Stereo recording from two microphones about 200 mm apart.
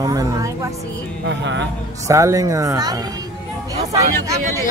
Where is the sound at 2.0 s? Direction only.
15° right (ahead or behind).